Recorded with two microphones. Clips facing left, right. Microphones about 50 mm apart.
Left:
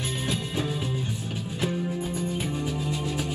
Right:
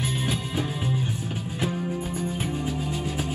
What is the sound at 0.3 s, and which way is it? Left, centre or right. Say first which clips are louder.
Music: even; right.